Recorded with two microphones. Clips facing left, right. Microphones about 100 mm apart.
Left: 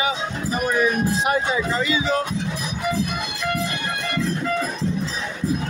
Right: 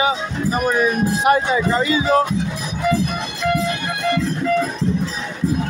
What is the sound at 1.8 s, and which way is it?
Speech, 40° right (ahead or behind).